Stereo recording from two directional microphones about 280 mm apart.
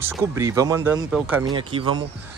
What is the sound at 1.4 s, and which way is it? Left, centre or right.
Speech, centre.